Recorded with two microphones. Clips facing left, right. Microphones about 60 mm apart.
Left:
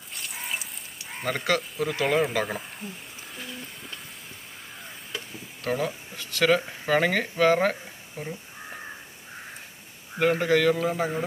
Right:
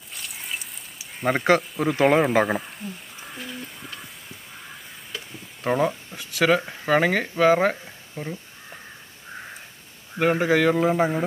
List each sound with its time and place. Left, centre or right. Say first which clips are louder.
0.1 s a sound: even; centre
1.2 s speech: right 6 dB; right
5.6 s speech: right 5 dB; right
8.2 s speech: right 3 dB; centre
10.1 s a man's voice: right 2 dB; centre; by 11.2 s right